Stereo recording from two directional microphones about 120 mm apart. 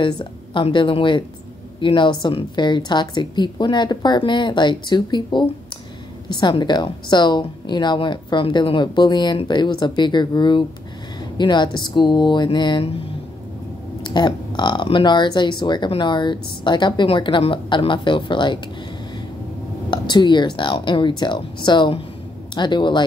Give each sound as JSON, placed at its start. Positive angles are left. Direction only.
{"t": 0.0, "sound": "a woman's voice", "side_deg": 45}
{"t": 14.1, "sound": "speech", "side_deg": 40}
{"t": 19.9, "sound": "speech", "side_deg": 40}